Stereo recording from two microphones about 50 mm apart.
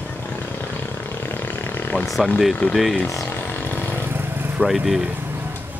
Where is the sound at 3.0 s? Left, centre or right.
Left.